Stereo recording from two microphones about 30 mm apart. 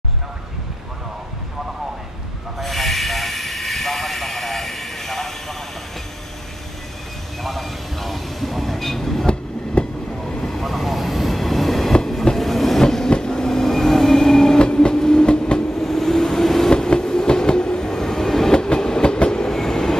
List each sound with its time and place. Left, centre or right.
2.6 s train: centre
7.4 s vehicle: centre
9.2 s train: left
10.6 s train: centre
14.6 s train: left
15.8 s vehicle: centre
16.7 s train: left; by 18.5 s centre
18.5 s train: left
19.1 s train: left
19.5 s train: centre